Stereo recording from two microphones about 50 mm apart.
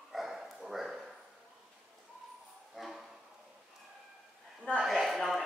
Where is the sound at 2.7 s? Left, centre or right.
Centre.